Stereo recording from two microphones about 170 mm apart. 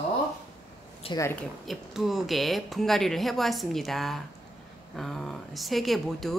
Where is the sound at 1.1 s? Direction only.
35° left (ahead or behind).